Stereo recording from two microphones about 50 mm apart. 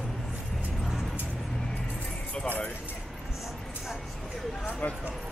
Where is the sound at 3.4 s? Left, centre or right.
Centre.